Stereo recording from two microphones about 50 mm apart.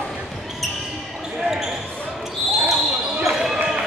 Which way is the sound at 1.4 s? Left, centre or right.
Centre.